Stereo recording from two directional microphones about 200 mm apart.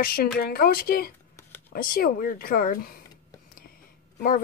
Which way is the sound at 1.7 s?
45° left (ahead or behind).